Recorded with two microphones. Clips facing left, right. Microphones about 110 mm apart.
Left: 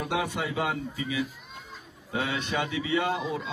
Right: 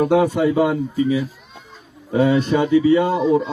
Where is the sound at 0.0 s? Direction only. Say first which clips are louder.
Right 14 dB; 45° right (ahead or behind).